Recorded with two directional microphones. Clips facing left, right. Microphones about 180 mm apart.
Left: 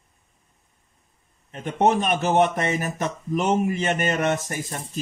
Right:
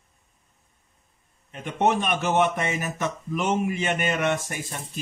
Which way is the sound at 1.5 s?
40° left (ahead or behind).